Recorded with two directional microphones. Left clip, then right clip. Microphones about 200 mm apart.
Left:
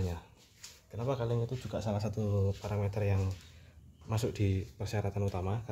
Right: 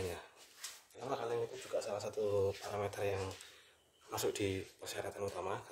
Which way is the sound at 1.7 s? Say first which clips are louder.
Left 2 dB; 20° left (ahead or behind).